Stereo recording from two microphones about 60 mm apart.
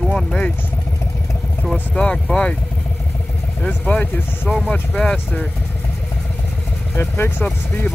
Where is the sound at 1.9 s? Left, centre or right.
Centre.